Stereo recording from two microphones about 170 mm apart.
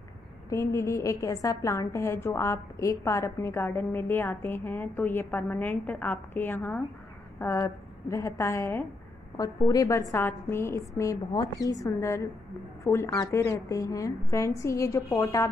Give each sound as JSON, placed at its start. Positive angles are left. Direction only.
{"t": 0.5, "sound": "a woman's voice", "side_deg": 15}